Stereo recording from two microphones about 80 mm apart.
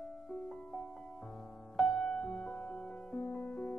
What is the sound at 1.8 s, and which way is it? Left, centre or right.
Music, centre.